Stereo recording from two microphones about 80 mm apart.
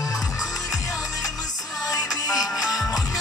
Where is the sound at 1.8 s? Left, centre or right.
Left.